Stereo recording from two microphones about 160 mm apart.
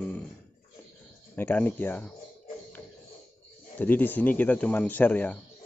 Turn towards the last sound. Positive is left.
turn(degrees=10)  # may be behind; listen again after turning